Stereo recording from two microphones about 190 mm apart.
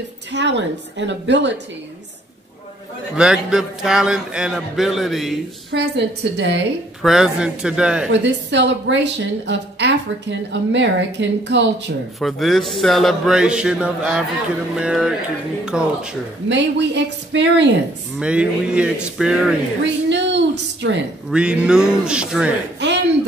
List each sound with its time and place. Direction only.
0.3 s a woman's voice: 65° right (ahead or behind)
3.2 s a man's voice: 5° right (ahead or behind)
5.7 s a woman's voice: 65° right (ahead or behind)
7.0 s a man's voice: centre (ahead or behind)
8.1 s a woman's voice: 70° right (ahead or behind)
12.2 s a man's voice: centre (ahead or behind)
16.4 s a woman's voice: 70° right (ahead or behind)
18.2 s a man's voice: 5° right (ahead or behind)
19.8 s a woman's voice: 65° right (ahead or behind)
21.3 s a man's voice: 5° right (ahead or behind)